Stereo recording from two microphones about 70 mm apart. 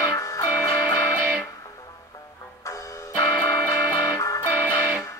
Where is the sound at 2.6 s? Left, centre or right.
Left.